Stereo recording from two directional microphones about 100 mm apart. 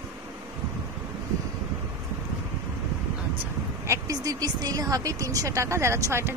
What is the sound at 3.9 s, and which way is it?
Speech, 35° right (ahead or behind).